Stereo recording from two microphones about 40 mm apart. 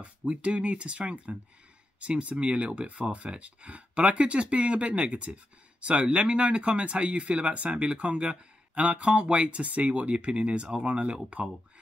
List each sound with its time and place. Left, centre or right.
0.0 s speech: right